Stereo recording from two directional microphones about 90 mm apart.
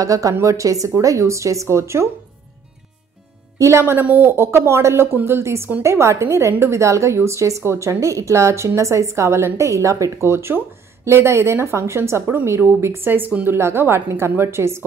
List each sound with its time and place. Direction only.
0.0 s a woman's voice: 40° right (ahead or behind)
3.5 s a woman's voice: 30° right (ahead or behind)